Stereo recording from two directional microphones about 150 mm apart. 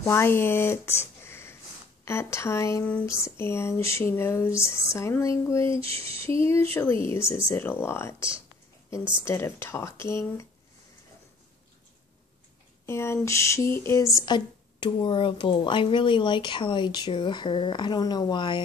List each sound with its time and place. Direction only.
0.0 s speech: 15° left (ahead or behind)
5.9 s a sound: 40° right (ahead or behind)
6.4 s speech: 15° left (ahead or behind)
12.8 s speech: 15° left (ahead or behind)
14.2 s speech: 30° left (ahead or behind)